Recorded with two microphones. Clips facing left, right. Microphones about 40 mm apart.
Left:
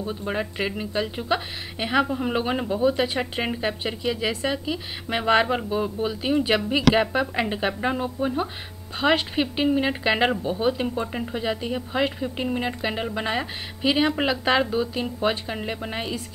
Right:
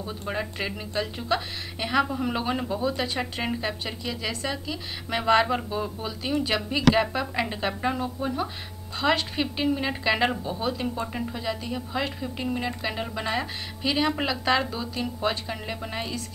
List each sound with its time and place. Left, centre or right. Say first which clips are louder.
0.0 s a woman's voice: left 3 dB; centre